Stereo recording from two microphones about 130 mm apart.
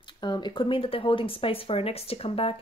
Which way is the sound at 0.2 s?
35° left (ahead or behind).